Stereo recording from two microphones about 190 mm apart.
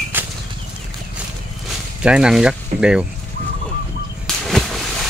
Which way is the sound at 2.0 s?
5° right (ahead or behind).